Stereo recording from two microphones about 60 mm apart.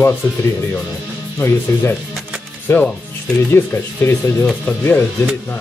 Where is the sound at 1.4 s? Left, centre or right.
Left.